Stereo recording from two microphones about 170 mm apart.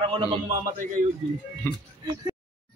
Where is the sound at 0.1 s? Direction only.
35° right (ahead or behind).